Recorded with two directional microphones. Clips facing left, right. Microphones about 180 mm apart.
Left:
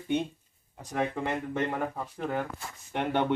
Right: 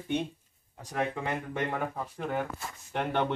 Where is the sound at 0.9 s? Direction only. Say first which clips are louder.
Left 2 dB; centre (ahead or behind).